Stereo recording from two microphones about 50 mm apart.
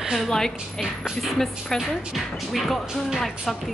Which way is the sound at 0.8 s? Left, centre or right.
Centre.